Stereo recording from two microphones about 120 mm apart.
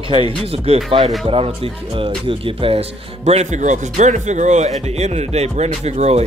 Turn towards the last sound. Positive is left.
turn(degrees=-65)  # may be behind; listen again after turning